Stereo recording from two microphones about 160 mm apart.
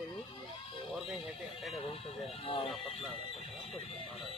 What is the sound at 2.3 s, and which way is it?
Speech, 35° left (ahead or behind).